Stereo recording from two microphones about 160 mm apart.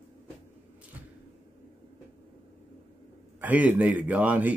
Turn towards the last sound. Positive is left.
turn(degrees=-10)  # may be behind; listen again after turning